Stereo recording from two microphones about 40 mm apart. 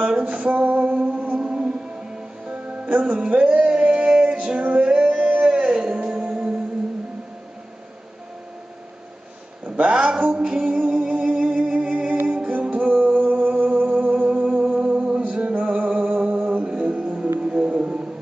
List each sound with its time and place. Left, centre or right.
0.2 s music: right
2.9 s music: right
9.8 s a sound: right
10.3 s music: centre
10.6 s music: right
14.8 s music: centre; by 16.6 s right
16.6 s music: right